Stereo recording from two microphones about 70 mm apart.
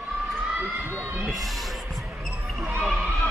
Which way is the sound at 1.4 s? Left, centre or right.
Centre.